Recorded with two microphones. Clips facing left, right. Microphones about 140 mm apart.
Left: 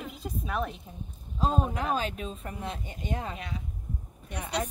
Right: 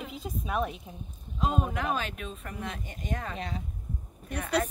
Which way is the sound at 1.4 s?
30° left (ahead or behind).